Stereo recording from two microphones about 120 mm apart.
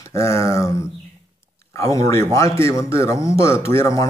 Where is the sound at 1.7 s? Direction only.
25° left (ahead or behind).